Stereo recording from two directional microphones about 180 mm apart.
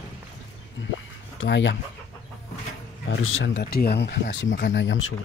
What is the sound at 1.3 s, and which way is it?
Speech, 90° left.